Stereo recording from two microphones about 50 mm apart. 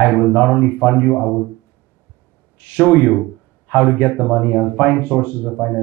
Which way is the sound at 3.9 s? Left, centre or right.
Left.